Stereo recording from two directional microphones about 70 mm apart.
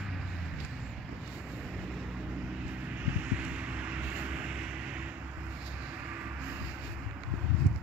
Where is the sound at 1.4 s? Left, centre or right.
Centre.